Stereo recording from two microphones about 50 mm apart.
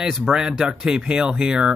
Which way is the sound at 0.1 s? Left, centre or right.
Centre.